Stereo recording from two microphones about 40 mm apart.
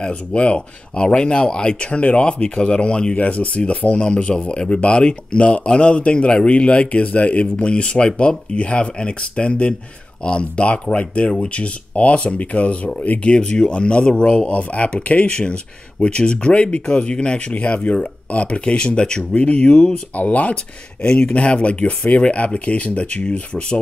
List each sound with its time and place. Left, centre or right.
0.0 s speech: left
20.2 s speech: left
21.0 s speech: left